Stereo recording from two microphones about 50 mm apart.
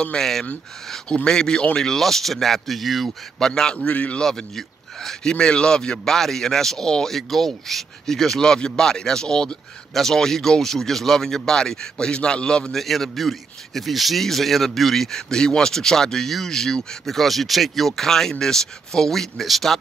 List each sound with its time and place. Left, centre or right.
0.2 s a man's voice: centre
1.8 s speech: centre
3.3 s a man's voice: centre
3.7 s speech: left
4.2 s a man's voice: centre
12.7 s speech: centre